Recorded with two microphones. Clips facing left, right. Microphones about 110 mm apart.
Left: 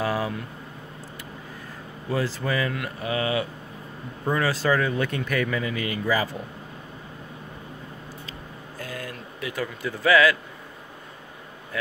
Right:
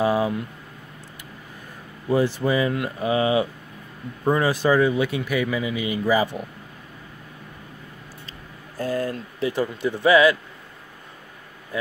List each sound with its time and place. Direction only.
0.0 s a sound: 20° right (ahead or behind)
2.0 s speech: 20° right (ahead or behind)
8.3 s speech: 35° right (ahead or behind)
11.7 s speech: 25° right (ahead or behind)